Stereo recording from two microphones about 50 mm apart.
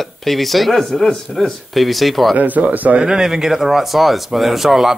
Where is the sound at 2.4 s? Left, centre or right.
Right.